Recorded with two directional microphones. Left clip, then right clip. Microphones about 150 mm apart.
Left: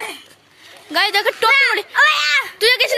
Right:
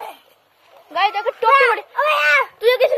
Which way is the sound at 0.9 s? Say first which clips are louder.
Left 2 dB; centre (ahead or behind).